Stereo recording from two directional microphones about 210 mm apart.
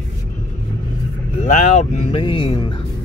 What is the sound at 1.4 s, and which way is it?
Speech, 35° left (ahead or behind).